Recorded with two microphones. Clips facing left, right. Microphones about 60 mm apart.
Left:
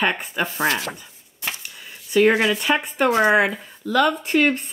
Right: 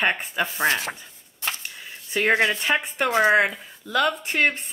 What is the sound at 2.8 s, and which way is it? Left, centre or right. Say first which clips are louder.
Speech: left 3 dB; centre.